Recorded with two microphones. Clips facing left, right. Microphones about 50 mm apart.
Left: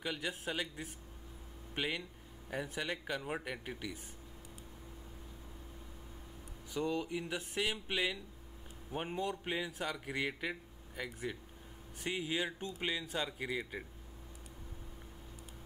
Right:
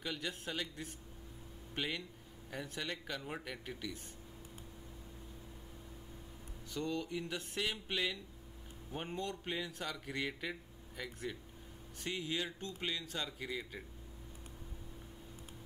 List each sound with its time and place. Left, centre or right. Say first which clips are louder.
0.0 s speech: left 2 dB; centre
6.7 s speech: left 3 dB; centre